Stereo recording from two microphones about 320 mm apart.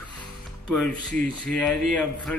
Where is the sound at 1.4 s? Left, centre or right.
Centre.